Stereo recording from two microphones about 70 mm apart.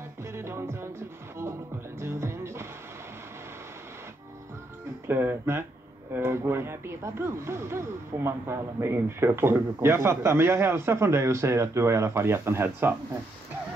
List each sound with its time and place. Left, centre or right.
0.2 s music: right
5.0 s speech: right